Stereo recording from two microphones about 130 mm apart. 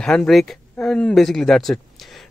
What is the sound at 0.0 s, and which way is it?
Speech, 5° left (ahead or behind).